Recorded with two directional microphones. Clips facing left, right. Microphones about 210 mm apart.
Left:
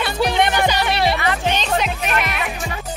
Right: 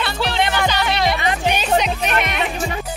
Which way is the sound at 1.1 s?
20° right (ahead or behind).